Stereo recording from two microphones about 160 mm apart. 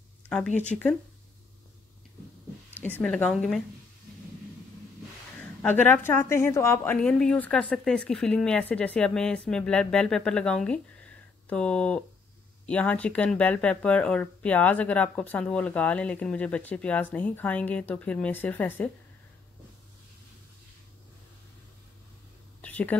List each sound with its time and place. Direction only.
0.7 s speech: 5° left (ahead or behind)
3.0 s speech: 5° left (ahead or behind)
5.4 s speech: 10° left (ahead or behind)
7.0 s speech: 5° left (ahead or behind)
22.6 s a sound: 10° left (ahead or behind)